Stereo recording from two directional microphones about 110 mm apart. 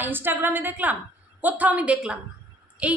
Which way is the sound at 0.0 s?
20° right (ahead or behind).